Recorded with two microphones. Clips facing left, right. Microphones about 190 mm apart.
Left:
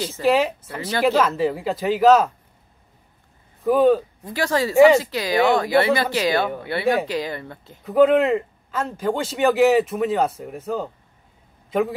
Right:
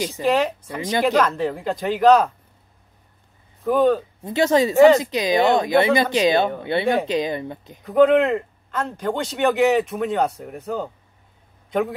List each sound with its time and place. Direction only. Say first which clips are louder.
0.2 s speech: left 2 dB; 5° left (ahead or behind)
0.6 s speech: right 3 dB; 15° right (ahead or behind)
1.0 s a man's voice: left 2 dB; 5° left (ahead or behind)
3.6 s speech: left 2 dB; 5° left (ahead or behind)
4.2 s speech: right 5 dB; 25° right (ahead or behind)
7.8 s a man's voice: even; centre (ahead or behind)